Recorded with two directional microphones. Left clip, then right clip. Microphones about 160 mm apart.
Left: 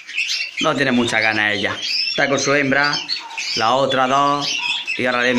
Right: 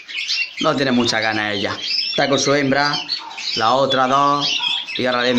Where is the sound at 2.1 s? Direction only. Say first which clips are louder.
Right 1 dB; 20° right (ahead or behind).